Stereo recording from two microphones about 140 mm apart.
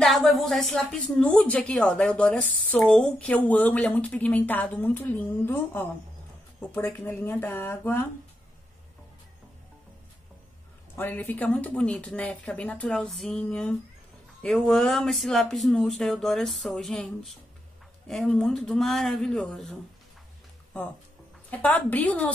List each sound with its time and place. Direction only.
0.0 s a woman's voice: centre (ahead or behind)
11.0 s a woman's voice: 15° left (ahead or behind)
21.5 s a woman's voice: 10° left (ahead or behind)